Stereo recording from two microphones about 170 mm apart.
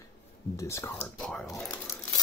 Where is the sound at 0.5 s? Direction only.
15° left (ahead or behind).